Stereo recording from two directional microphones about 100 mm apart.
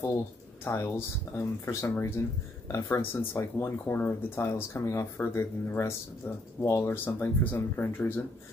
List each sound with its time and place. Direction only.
0.7 s speech: 25° left (ahead or behind)